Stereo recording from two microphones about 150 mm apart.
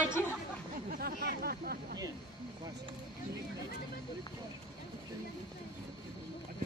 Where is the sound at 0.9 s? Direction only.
90° right.